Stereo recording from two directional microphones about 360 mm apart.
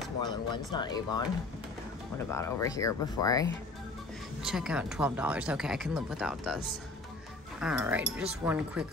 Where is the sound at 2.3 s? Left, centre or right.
Centre.